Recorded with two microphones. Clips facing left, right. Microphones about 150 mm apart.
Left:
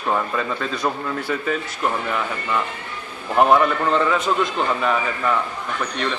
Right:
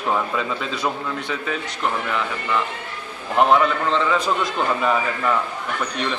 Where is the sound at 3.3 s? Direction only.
5° left (ahead or behind).